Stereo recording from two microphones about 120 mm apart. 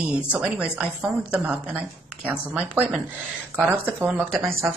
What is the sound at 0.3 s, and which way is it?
Speech, 10° right (ahead or behind).